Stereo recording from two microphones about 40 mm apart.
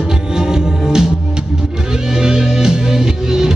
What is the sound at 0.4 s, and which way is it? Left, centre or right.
Music, centre.